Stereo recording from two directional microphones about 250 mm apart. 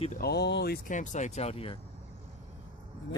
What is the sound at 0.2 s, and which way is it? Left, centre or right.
Speech, left.